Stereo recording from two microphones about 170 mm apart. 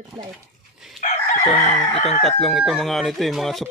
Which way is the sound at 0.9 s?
40° left (ahead or behind).